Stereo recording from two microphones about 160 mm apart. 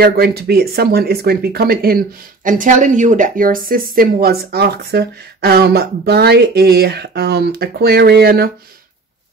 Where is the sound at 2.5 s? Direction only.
55° right (ahead or behind); by 8.5 s 75° right (ahead or behind).